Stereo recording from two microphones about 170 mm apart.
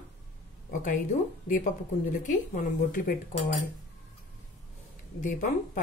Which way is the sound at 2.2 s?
50° left (ahead or behind).